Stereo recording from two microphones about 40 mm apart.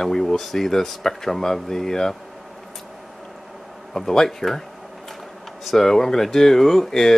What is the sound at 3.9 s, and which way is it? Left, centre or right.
Speech, centre.